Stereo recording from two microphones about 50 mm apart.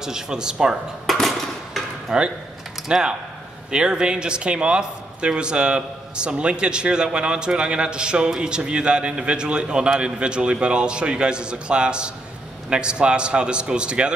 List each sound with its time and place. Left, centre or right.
0.0 s speech: centre
1.0 s a sound: centre
2.1 s speech: centre